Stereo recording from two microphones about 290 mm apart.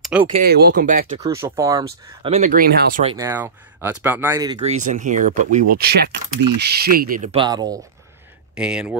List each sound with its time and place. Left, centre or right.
0.0 s a sound: centre
0.3 s speech: right
1.2 s speech: centre
2.2 s speech: right
3.0 s speech: centre
3.3 s speech: centre
4.6 s speech: right; by 8.9 s centre